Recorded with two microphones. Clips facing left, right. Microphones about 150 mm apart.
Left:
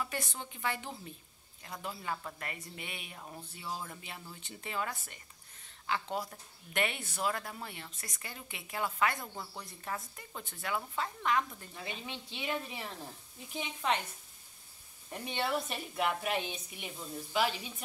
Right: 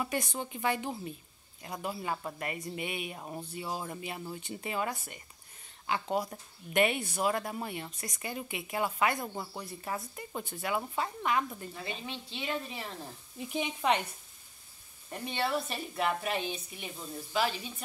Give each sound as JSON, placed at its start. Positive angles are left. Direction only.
{"t": 0.0, "sound": "speech", "side_deg": -15}
{"t": 9.6, "sound": "speech", "side_deg": -10}
{"t": 12.1, "sound": "a woman's voice", "side_deg": 15}
{"t": 13.5, "sound": "speech", "side_deg": -15}
{"t": 15.0, "sound": "a woman's voice", "side_deg": 15}